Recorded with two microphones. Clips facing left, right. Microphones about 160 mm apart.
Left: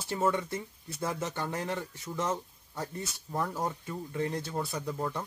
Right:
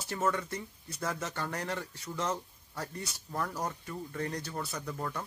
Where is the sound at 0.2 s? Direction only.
20° left (ahead or behind).